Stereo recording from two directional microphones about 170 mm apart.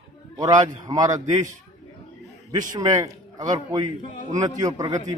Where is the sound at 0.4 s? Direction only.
20° right (ahead or behind).